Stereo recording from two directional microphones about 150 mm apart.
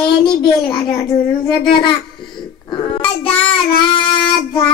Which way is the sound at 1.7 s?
30° left (ahead or behind).